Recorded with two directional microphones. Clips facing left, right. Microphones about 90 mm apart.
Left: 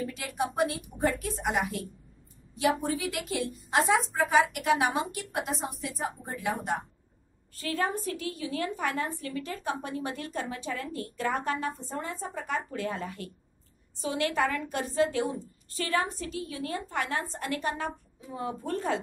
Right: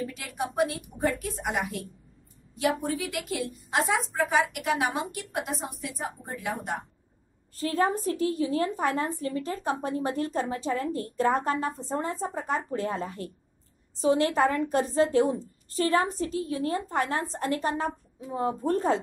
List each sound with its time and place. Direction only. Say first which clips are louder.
0.0 s a woman's voice: left 1 dB; centre (ahead or behind)
7.5 s a woman's voice: right 5 dB; 35° right (ahead or behind)